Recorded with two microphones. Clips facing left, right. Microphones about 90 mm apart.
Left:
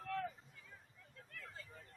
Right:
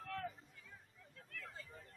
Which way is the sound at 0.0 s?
Centre (ahead or behind).